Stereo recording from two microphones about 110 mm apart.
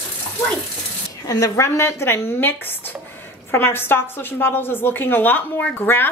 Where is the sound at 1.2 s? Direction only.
30° left (ahead or behind).